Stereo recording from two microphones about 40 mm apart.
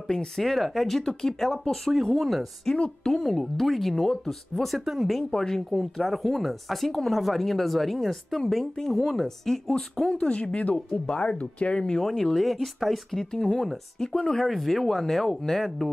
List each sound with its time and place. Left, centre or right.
0.1 s speech: centre
2.7 s speech: centre
3.2 s speech: centre
5.3 s speech: centre
5.7 s speech: centre
10.1 s speech: left
12.0 s speech: centre
13.2 s speech: centre